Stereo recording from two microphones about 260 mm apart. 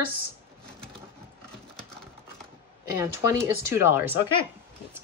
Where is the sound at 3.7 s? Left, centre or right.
Centre.